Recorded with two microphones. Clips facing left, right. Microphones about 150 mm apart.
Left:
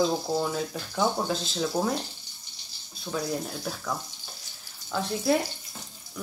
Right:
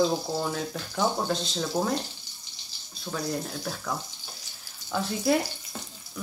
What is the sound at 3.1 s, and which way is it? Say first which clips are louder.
Speech: left 2 dB; 10° right (ahead or behind).